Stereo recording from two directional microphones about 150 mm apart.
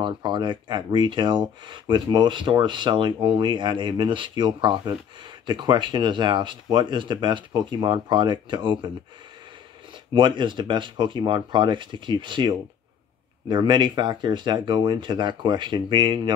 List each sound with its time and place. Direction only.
0.0 s speech: 30° right (ahead or behind)
10.1 s speech: 30° right (ahead or behind)